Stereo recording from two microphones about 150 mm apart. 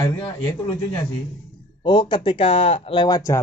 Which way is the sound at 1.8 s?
30° left (ahead or behind).